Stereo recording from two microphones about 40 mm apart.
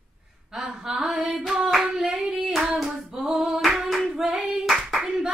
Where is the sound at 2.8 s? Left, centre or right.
Centre.